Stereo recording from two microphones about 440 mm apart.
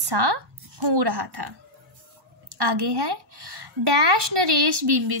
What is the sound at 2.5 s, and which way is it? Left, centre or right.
A woman's voice, right.